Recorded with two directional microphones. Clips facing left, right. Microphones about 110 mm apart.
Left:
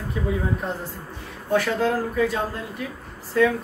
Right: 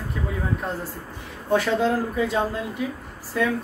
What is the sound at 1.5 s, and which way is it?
Speech, 20° right (ahead or behind).